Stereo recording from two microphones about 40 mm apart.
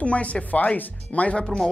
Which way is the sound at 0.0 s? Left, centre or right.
Left.